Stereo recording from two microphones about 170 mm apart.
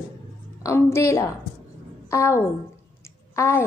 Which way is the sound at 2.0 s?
15° left (ahead or behind).